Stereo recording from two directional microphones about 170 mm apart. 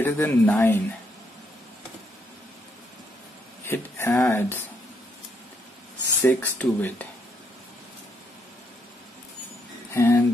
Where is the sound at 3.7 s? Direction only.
15° left (ahead or behind).